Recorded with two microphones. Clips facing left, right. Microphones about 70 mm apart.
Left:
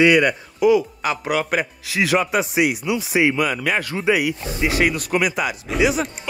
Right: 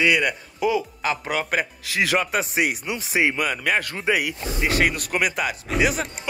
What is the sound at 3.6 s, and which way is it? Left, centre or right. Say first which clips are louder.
Speech: left 2 dB; left.